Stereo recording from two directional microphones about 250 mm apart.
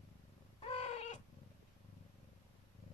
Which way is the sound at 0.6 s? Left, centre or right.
Left.